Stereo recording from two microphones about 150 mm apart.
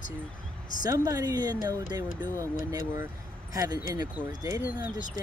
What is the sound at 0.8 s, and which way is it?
Speech, 25° right (ahead or behind).